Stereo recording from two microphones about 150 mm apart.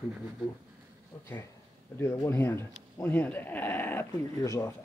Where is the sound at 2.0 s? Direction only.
15° left (ahead or behind).